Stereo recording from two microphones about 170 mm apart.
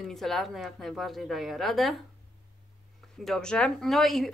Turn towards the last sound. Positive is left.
turn(degrees=0)  # may be behind; listen again after turning